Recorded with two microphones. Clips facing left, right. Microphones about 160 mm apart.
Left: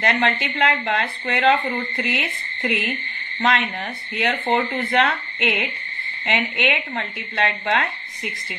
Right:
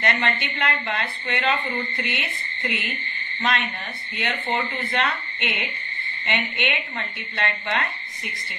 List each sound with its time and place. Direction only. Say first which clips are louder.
0.0 s a woman's voice: left 4 dB; 90° left